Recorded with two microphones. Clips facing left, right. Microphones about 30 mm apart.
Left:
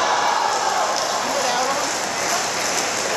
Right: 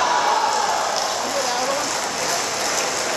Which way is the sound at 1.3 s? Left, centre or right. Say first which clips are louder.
Left 2 dB; centre.